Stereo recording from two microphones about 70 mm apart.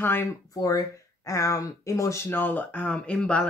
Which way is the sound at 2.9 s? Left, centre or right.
Centre.